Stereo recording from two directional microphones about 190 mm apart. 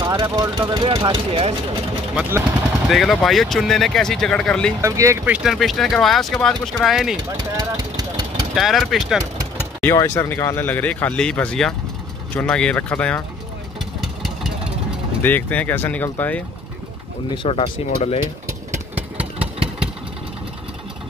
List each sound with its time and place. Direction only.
0.0 s speech: 20° right (ahead or behind)
2.1 s speech: 10° right (ahead or behind)
2.9 s speech: centre (ahead or behind)
4.8 s speech: 15° right (ahead or behind)
7.5 s vehicle: 20° right (ahead or behind)
8.5 s speech: centre (ahead or behind)
9.8 s speech: 10° left (ahead or behind)
13.7 s vehicle: centre (ahead or behind)
15.2 s speech: 10° left (ahead or behind)
17.3 s speech: 30° left (ahead or behind)
18.9 s engine: 5° right (ahead or behind)